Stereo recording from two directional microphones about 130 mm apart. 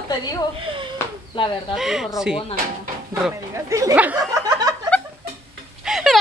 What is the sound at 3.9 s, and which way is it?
Speech, 10° right (ahead or behind).